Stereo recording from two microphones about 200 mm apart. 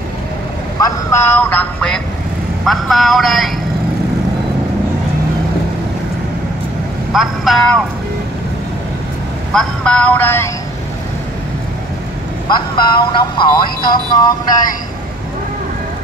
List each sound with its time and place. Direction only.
0.7 s a man's voice: 15° left (ahead or behind); by 3.5 s centre (ahead or behind)
7.1 s a man's voice: centre (ahead or behind)
9.5 s speech: 5° left (ahead or behind)
12.4 s speech: 20° left (ahead or behind)